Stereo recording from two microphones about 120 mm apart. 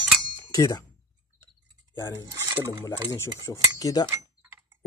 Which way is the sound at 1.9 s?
20° left (ahead or behind).